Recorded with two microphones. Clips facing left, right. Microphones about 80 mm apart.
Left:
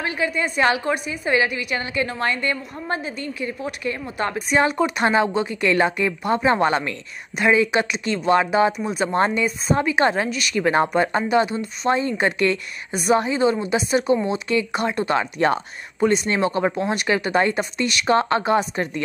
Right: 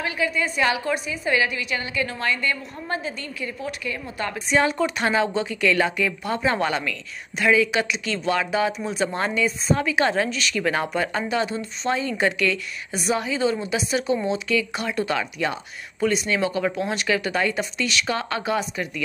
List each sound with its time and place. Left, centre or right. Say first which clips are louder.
0.0 s a woman's voice: left 1 dB; left
0.9 s a woman's voice: left 2 dB; left
4.4 s a woman's voice: left 1 dB; centre
8.8 s speech: left 1 dB; centre
9.1 s a woman's voice: left 4 dB; left
11.9 s a woman's voice: left 2 dB; left